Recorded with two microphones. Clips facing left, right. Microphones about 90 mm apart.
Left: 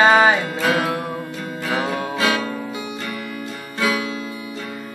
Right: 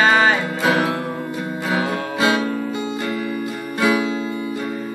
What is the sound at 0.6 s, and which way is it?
Music, 20° right (ahead or behind).